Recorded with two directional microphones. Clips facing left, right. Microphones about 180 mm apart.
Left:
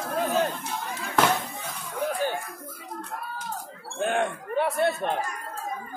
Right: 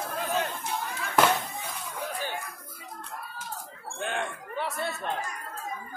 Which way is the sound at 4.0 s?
45° left (ahead or behind).